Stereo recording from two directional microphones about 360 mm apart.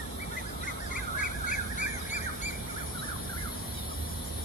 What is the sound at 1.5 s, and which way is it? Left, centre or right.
Goose, left.